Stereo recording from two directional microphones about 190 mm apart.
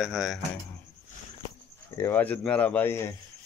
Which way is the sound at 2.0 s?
10° left (ahead or behind).